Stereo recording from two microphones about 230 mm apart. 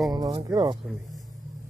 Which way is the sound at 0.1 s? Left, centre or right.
Centre.